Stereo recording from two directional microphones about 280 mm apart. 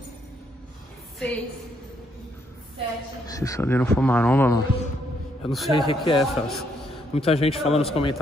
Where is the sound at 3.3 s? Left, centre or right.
Centre.